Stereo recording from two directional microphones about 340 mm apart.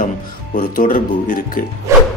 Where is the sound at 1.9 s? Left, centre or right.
Centre.